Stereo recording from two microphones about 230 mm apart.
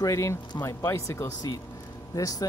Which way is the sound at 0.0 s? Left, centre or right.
Centre.